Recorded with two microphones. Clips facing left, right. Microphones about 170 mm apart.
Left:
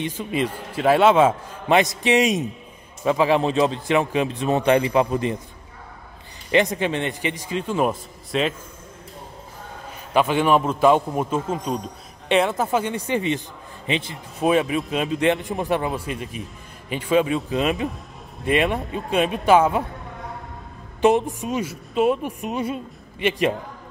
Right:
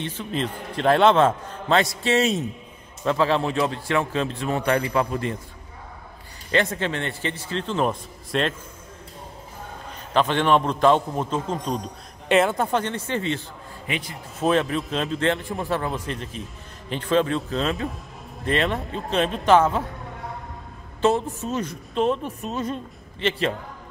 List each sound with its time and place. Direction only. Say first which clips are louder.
0.0 s a woman's voice: left 3 dB; 10° left (ahead or behind)
6.5 s a woman's voice: left 3 dB; 15° left (ahead or behind)
10.1 s a woman's voice: left 1 dB; 10° left (ahead or behind); by 14.1 s 25° left (ahead or behind)
14.4 s a woman's voice: left 2 dB; 10° left (ahead or behind)
21.0 s a woman's voice: left 3 dB; 15° left (ahead or behind)